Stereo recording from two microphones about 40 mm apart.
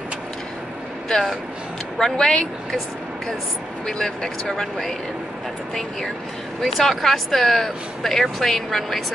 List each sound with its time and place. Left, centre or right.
2.0 s speech: centre
3.8 s speech: centre
6.6 s speech: centre